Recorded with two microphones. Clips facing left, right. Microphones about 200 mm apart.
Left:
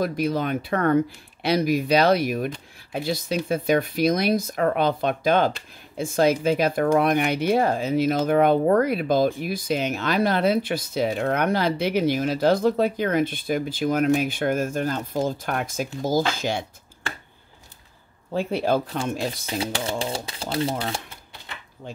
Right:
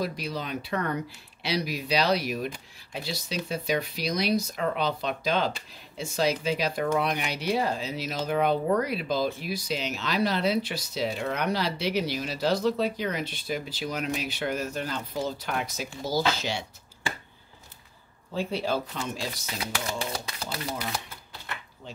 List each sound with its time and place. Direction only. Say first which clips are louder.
0.0 s speech: left 8 dB; 50° left (ahead or behind)
18.3 s speech: left 6 dB; 55° left (ahead or behind)
19.4 s speech: left 6 dB; 30° left (ahead or behind)